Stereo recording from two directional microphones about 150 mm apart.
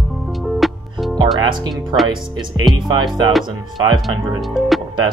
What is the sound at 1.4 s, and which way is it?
Speech, 30° right (ahead or behind).